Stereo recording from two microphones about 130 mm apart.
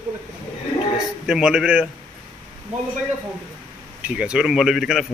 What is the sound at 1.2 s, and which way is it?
Speech, 5° right (ahead or behind).